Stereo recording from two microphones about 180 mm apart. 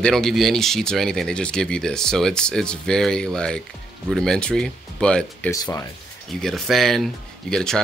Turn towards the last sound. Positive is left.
turn(degrees=5)  # may be behind; listen again after turning